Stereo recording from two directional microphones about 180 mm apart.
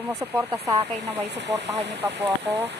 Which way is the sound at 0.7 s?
35° right (ahead or behind).